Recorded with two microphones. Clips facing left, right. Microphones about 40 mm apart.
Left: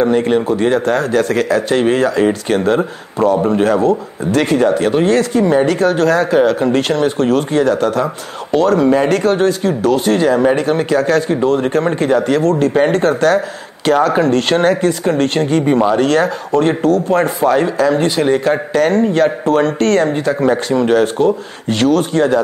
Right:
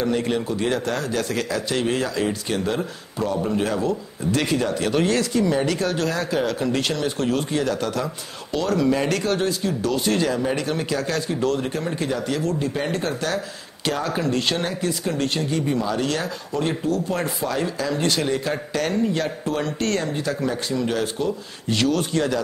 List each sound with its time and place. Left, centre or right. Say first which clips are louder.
0.0 s speech: left 10 dB; left